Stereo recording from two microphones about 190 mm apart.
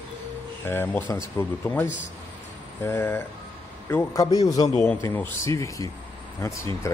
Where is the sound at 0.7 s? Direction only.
10° left (ahead or behind).